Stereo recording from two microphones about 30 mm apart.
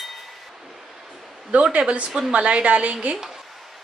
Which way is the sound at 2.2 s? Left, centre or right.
Right.